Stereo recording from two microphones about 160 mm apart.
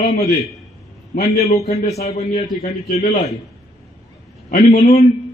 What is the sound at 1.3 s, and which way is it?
Speech, 40° left (ahead or behind).